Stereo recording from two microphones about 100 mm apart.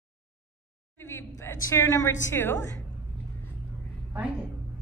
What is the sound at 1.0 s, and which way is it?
A woman's voice, 25° left (ahead or behind).